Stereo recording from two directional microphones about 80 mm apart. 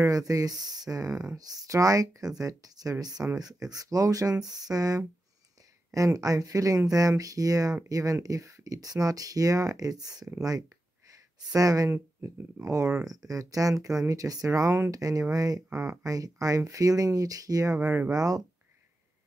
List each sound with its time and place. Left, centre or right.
0.0 s speech: right
11.5 s speech: right
17.7 s speech: right
18.1 s speech: right